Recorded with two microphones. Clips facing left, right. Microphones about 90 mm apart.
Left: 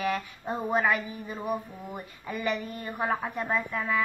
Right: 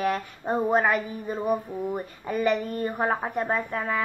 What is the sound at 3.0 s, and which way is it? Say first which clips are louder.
Speech: right 1 dB; 35° right (ahead or behind).